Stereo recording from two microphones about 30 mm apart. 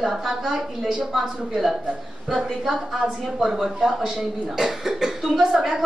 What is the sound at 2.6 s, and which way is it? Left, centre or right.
Speech, centre.